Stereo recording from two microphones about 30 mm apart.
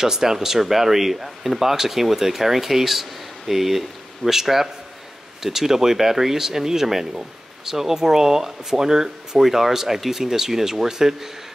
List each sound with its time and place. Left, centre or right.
0.0 s speech: centre